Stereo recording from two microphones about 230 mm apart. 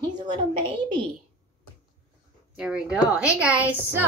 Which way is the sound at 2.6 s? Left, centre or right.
Centre.